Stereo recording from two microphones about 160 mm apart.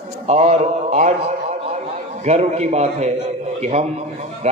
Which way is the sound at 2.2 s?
45° right (ahead or behind).